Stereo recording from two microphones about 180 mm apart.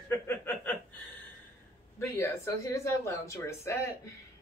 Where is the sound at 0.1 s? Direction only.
10° left (ahead or behind).